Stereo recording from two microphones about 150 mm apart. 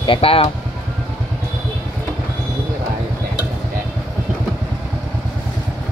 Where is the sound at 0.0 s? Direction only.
35° left (ahead or behind).